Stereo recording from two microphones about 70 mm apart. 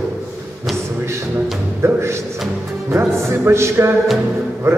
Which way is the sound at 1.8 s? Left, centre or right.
Right.